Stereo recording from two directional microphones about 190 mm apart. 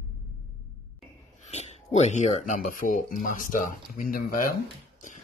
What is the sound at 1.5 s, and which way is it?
Speech, 35° left (ahead or behind).